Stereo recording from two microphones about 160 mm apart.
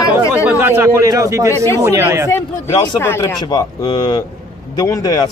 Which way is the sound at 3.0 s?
20° left (ahead or behind).